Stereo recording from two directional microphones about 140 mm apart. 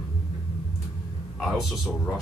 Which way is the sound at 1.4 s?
Centre (ahead or behind).